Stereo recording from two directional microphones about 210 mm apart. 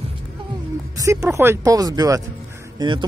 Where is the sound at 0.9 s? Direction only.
15° right (ahead or behind).